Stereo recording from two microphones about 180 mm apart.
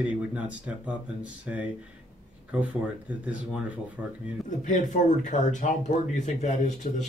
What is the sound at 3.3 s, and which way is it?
Speech, 5° right (ahead or behind).